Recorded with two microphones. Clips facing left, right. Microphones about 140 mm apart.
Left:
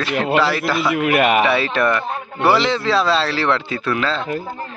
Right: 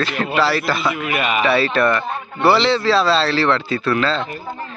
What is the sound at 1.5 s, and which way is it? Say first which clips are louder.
Speech: right 1 dB; 15° left (ahead or behind).